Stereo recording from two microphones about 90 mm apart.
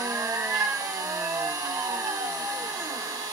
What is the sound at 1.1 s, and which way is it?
Vehicle, 35° right (ahead or behind).